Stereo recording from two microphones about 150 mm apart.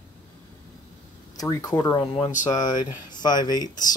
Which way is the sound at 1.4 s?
25° left (ahead or behind).